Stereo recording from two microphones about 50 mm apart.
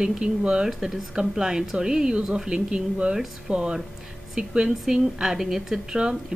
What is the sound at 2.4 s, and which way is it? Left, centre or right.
Speech, centre.